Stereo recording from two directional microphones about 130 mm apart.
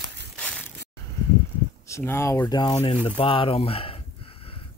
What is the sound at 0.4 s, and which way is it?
Crushing, 5° left (ahead or behind).